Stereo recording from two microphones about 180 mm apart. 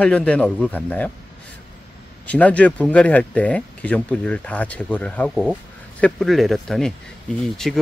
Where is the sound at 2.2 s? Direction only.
10° left (ahead or behind).